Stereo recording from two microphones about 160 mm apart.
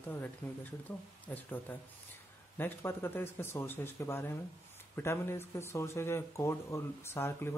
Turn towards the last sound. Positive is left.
turn(degrees=15)  # may be behind; listen again after turning